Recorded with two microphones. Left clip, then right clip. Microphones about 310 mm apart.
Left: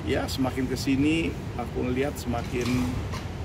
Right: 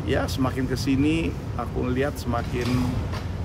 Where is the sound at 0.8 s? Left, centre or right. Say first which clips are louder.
Right 1 dB; centre.